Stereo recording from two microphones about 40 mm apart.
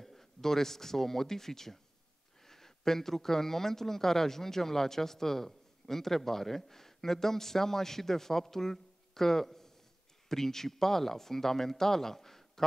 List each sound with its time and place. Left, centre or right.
0.0 s speech: centre